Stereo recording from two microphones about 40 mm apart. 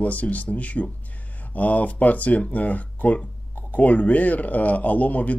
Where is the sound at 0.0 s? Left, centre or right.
Left.